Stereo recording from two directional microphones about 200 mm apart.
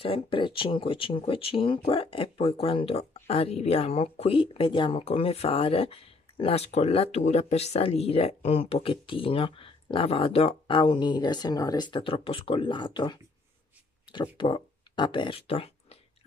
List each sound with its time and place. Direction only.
0.0 s speech: 25° left (ahead or behind)